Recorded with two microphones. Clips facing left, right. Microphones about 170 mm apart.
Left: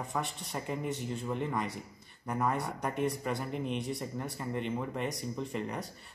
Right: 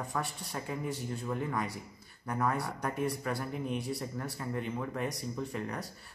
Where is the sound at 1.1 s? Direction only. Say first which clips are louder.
Left 1 dB; 25° left (ahead or behind).